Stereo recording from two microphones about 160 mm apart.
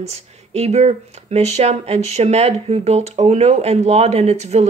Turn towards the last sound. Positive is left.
turn(degrees=-45)  # may be behind; listen again after turning